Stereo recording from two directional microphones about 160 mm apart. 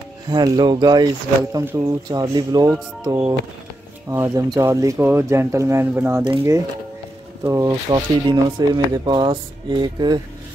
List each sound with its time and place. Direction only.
0.3 s speech: 25° right (ahead or behind)
4.1 s speech: 20° right (ahead or behind)
7.4 s speech: 20° right (ahead or behind)